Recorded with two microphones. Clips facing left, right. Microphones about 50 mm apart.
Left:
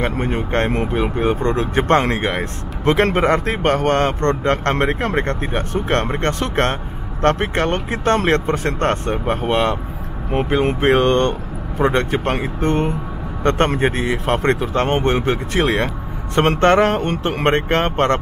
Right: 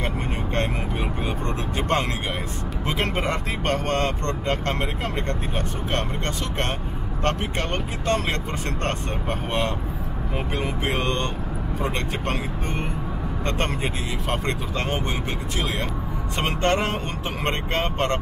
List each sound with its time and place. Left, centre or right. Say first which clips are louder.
0.0 s speech: left 7 dB; left